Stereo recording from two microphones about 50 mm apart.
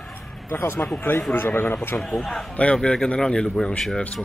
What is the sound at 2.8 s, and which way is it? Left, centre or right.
Speech, left.